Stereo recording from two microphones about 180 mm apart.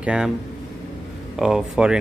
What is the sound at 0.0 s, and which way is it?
Speech, 5° right (ahead or behind).